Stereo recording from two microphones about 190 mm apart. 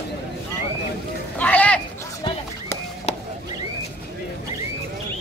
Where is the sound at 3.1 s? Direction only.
35° left (ahead or behind).